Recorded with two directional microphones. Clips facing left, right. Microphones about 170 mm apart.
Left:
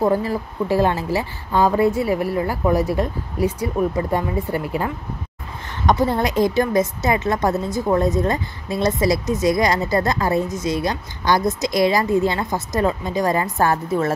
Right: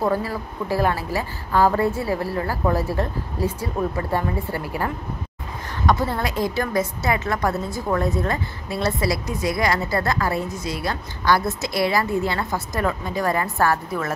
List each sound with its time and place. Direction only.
0.0 s a woman's voice: 20° left (ahead or behind)
5.9 s a woman's voice: 20° left (ahead or behind)